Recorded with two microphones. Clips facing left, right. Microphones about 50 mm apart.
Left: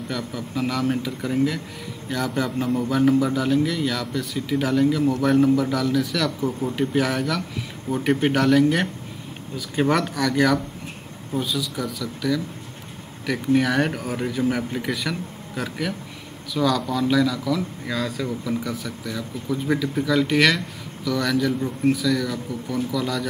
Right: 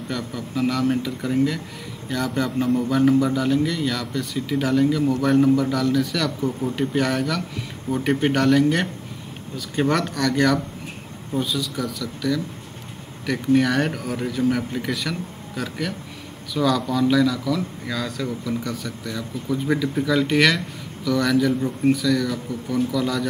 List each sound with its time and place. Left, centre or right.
0.1 s speech: centre